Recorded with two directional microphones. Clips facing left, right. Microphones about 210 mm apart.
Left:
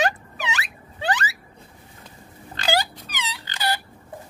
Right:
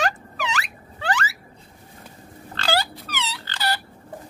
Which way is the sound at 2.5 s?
15° left (ahead or behind).